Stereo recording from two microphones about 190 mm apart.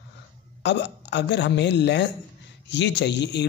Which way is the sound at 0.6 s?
65° left (ahead or behind).